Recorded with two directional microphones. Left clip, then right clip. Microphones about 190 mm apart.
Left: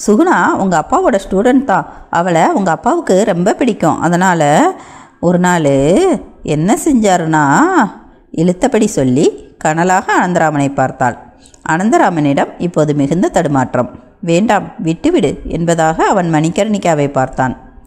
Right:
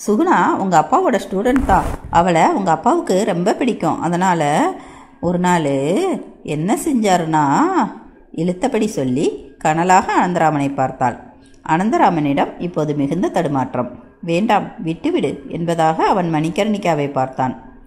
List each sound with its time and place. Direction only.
0.0 s a woman's voice: 45° left (ahead or behind)